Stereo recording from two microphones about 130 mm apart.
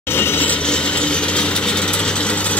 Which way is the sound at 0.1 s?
15° left (ahead or behind).